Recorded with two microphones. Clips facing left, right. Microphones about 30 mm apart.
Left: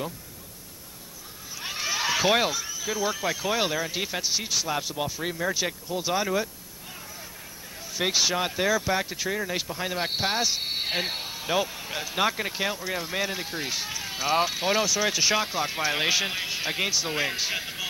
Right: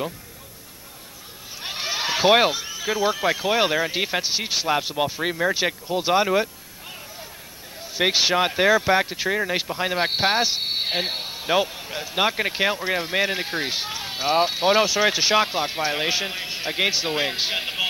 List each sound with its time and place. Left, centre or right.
1.6 s speech: right
7.9 s speech: right
11.9 s speech: centre
12.2 s speech: right
16.3 s a man's voice: centre
16.7 s speech: right